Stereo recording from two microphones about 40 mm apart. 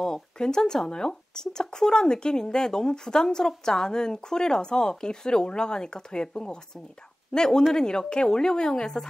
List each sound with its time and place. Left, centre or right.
0.0 s a woman's voice: centre